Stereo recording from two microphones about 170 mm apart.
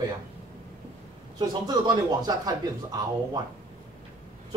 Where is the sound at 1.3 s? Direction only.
25° right (ahead or behind).